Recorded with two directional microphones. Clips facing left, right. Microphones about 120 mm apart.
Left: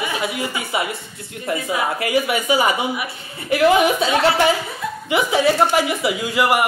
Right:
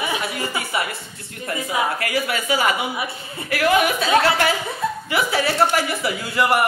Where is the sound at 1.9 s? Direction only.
20° left (ahead or behind).